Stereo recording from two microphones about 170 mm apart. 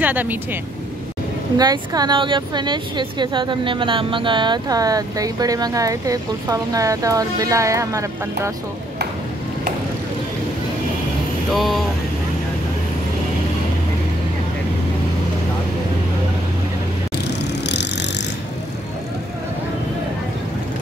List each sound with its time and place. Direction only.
0.0 s speech: 10° right (ahead or behind)
1.6 s speech: 25° right (ahead or behind)
11.5 s speech: centre (ahead or behind)
17.2 s vehicle: 90° left